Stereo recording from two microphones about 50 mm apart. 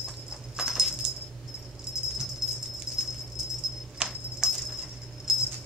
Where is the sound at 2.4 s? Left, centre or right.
Centre.